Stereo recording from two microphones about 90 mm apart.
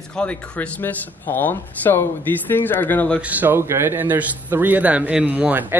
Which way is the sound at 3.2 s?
20° right (ahead or behind).